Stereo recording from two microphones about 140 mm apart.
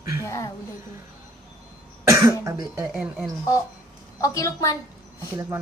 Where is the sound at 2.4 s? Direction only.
20° right (ahead or behind).